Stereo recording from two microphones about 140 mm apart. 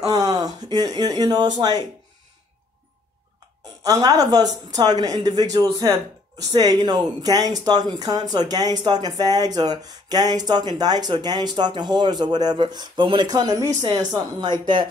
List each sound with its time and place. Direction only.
0.0 s speech: 25° right (ahead or behind)
3.8 s speech: 25° right (ahead or behind)